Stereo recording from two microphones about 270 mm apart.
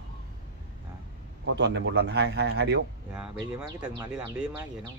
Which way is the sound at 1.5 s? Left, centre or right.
Right.